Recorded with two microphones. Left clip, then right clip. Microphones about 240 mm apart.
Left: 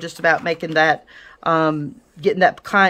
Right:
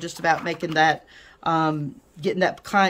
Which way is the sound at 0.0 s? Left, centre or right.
Centre.